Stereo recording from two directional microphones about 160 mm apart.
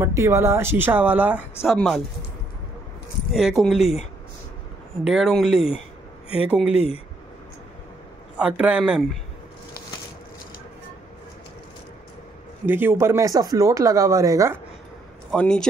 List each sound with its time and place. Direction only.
0.0 s speech: 20° right (ahead or behind)
1.7 s speech: 5° left (ahead or behind)
3.3 s speech: centre (ahead or behind)
5.0 s speech: 5° right (ahead or behind)
6.7 s speech: 40° left (ahead or behind)
8.4 s speech: 5° right (ahead or behind)
12.6 s speech: 15° right (ahead or behind)
15.3 s speech: 5° left (ahead or behind)